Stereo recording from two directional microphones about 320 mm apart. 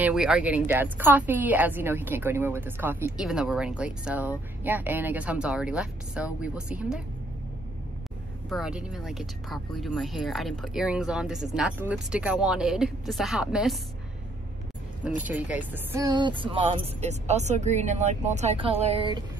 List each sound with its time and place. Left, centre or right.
0.0 s speech: centre
8.5 s speech: centre
15.0 s speech: centre